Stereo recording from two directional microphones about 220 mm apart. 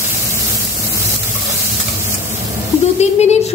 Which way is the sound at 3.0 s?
30° left (ahead or behind).